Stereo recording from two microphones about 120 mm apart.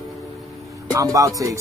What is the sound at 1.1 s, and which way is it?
Music, 30° right (ahead or behind).